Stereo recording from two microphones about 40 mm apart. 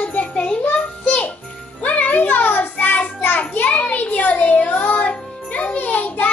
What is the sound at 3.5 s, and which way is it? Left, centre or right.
A child's voice, left.